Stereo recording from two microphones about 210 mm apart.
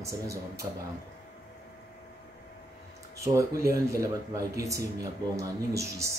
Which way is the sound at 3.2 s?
15° right (ahead or behind).